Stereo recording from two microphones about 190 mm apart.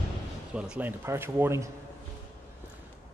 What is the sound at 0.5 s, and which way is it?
Speech, 5° right (ahead or behind).